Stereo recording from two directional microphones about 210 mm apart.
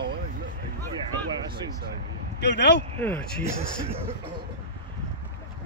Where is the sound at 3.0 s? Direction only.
10° left (ahead or behind).